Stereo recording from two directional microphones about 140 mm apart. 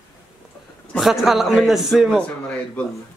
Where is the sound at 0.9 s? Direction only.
Centre (ahead or behind).